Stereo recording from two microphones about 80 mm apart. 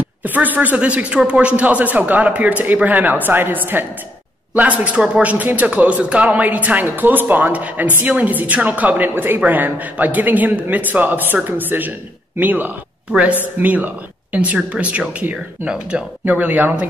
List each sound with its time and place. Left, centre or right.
0.0 s speech: right